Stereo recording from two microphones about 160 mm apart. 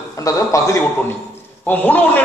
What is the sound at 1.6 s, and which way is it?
Speech, 10° left (ahead or behind).